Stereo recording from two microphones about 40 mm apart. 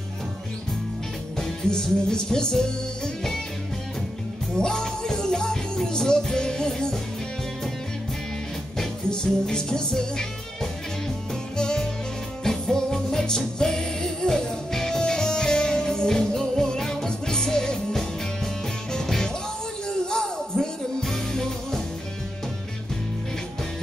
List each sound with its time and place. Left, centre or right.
1.3 s music: centre
4.6 s music: centre
8.7 s music: centre